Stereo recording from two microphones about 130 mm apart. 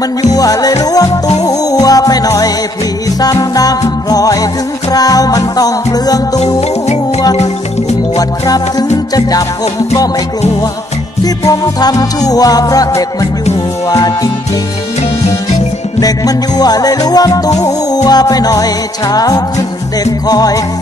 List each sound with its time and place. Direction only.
0.2 s music: 30° left (ahead or behind)
8.2 s music: 30° left (ahead or behind)
11.2 s music: 30° left (ahead or behind)
16.0 s music: 30° left (ahead or behind)